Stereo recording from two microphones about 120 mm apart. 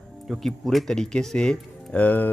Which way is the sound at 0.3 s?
Centre (ahead or behind).